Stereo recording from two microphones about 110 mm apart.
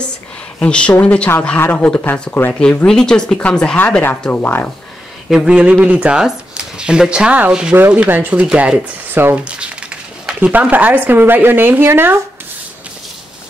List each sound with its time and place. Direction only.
0.6 s speech: 10° left (ahead or behind)
5.3 s speech: 5° right (ahead or behind)
7.7 s speech: 20° right (ahead or behind)